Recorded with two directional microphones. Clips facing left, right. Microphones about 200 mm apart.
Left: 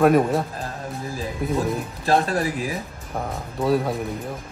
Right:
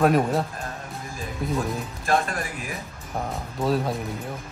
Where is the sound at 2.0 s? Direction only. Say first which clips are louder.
Left 4 dB; 35° left (ahead or behind).